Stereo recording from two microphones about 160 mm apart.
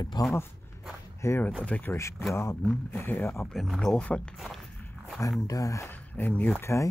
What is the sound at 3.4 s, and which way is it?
Speech, centre (ahead or behind).